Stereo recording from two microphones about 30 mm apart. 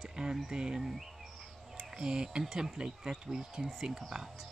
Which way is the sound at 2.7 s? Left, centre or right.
Right.